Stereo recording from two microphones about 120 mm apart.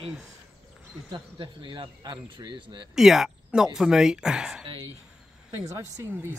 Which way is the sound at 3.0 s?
5° right (ahead or behind).